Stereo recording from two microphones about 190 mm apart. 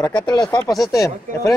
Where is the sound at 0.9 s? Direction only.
15° left (ahead or behind).